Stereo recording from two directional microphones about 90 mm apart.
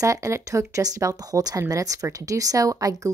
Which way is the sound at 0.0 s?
35° right (ahead or behind).